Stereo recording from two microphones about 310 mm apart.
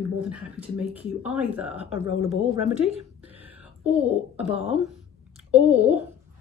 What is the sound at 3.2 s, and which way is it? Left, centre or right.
Whispering, centre.